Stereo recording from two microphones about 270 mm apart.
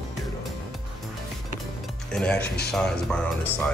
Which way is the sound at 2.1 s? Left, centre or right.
Centre.